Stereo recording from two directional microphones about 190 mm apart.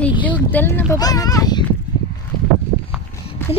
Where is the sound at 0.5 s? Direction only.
10° left (ahead or behind).